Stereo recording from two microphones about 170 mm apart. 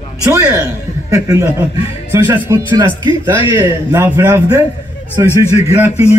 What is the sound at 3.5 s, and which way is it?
A man's voice, 15° right (ahead or behind).